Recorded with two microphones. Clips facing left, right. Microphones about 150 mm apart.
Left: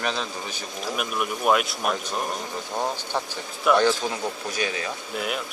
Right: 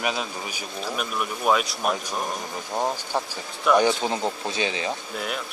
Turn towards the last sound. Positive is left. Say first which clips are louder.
# left 2 dB
turn(degrees=5)  # may be behind; listen again after turning